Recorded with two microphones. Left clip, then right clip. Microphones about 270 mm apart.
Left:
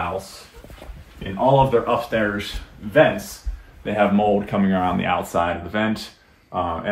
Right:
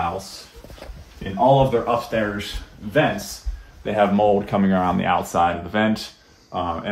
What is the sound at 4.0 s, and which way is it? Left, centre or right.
A man's voice, right.